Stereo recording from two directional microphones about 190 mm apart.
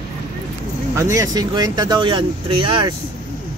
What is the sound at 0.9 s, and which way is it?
A man's voice, 15° right (ahead or behind).